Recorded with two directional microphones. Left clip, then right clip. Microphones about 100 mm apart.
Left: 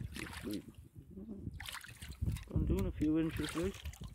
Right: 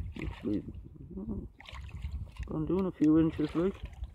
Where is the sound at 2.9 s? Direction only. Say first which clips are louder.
Right 9 dB; 65° right (ahead or behind).